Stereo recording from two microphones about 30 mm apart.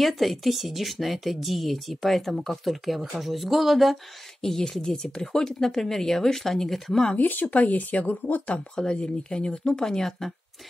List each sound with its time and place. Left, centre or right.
0.0 s speech: centre
4.4 s speech: centre
7.2 s speech: left
7.6 s speech: left
8.9 s speech: left; by 10.3 s centre